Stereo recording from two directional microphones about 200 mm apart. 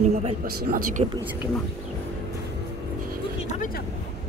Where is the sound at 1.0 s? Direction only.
25° right (ahead or behind).